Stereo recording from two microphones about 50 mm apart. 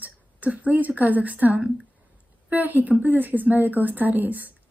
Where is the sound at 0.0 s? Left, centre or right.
Right.